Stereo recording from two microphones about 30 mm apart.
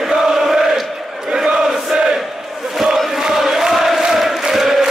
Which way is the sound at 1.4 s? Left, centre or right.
Right.